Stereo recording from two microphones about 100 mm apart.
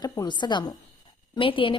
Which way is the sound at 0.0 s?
40° left (ahead or behind).